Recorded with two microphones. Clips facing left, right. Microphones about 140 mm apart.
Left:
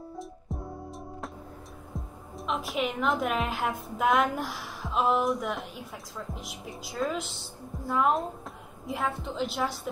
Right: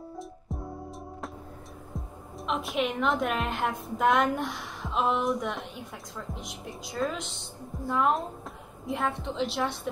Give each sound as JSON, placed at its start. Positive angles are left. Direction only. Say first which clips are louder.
{"t": 0.2, "sound": "music", "louder": "even", "side_deg": 0}
{"t": 2.0, "sound": "a woman's voice", "louder": "even", "side_deg": 0}